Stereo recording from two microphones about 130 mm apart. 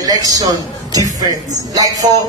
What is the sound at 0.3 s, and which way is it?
A man's voice, 30° right (ahead or behind).